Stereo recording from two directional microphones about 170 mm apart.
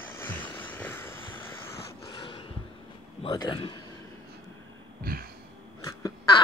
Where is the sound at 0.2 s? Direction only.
10° left (ahead or behind).